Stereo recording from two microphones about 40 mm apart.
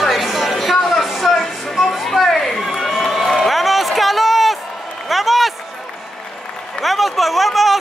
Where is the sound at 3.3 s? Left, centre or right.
Centre.